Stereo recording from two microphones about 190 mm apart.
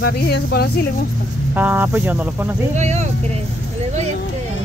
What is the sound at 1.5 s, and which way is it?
Speech, 10° right (ahead or behind).